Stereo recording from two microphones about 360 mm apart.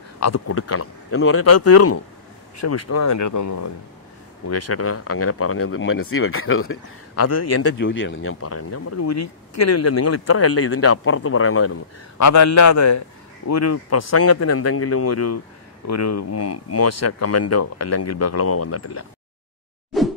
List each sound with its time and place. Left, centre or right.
0.2 s speech: left
7.7 s speech: left
12.2 s speech: left
19.9 s whoosh: centre